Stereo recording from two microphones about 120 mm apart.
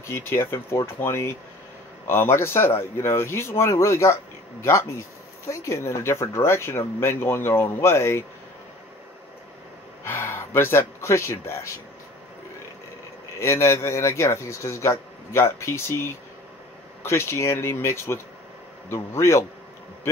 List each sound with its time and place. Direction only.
0.0 s speech: 20° left (ahead or behind)
10.0 s a man's voice: 20° left (ahead or behind)
13.4 s speech: 25° left (ahead or behind)